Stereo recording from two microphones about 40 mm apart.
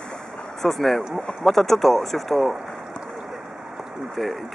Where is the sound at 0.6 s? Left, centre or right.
Centre.